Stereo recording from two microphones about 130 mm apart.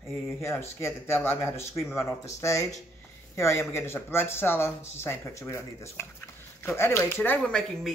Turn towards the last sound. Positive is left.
turn(degrees=5)  # may be behind; listen again after turning